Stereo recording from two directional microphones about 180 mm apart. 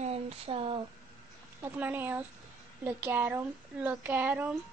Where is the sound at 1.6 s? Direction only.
10° right (ahead or behind).